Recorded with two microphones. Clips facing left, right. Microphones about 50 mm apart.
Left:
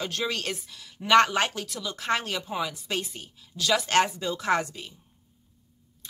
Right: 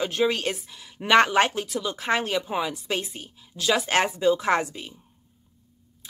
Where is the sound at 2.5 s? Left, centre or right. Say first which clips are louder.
Right 3 dB; right.